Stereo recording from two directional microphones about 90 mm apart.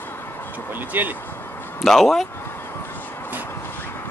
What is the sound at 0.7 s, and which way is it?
Speech, 20° right (ahead or behind).